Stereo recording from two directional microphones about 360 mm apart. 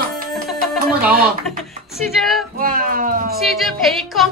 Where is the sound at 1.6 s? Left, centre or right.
Centre.